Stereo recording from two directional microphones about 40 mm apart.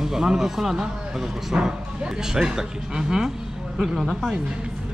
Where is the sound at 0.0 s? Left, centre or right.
Centre.